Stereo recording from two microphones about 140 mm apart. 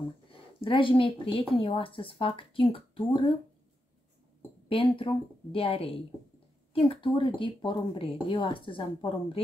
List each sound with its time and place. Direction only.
0.3 s a woman's voice: 40° left (ahead or behind)
4.6 s speech: 40° left (ahead or behind)